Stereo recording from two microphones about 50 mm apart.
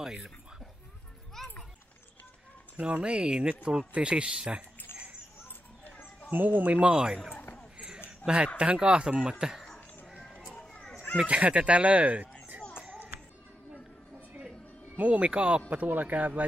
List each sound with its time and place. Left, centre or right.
0.0 s speech: centre
1.4 s a sound: centre
2.8 s speech: right
4.9 s children playing: right
5.9 s a sound: left
6.3 s speech: right
7.7 s a sound: centre
8.5 s speech: centre
10.7 s children playing: centre
11.1 s speech: right
15.0 s speech: right